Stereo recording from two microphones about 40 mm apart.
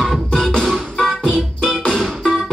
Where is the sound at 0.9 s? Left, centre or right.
Centre.